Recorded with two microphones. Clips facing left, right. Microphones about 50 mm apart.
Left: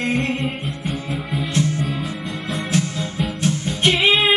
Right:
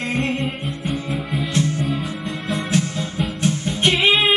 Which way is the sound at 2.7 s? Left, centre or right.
Right.